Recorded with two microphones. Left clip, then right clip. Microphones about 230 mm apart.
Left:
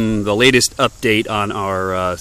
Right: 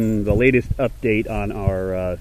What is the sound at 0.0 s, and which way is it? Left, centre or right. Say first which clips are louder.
Speech: left 4 dB; left.